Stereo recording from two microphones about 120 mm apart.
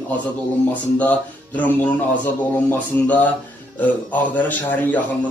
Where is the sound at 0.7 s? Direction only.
15° left (ahead or behind).